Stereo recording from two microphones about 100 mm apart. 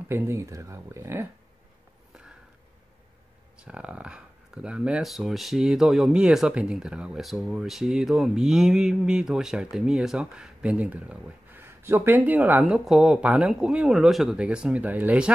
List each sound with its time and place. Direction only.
0.1 s speech: 30° right (ahead or behind)
3.5 s speech: 10° right (ahead or behind)
11.6 s speech: 25° right (ahead or behind)
12.6 s speech: 5° right (ahead or behind)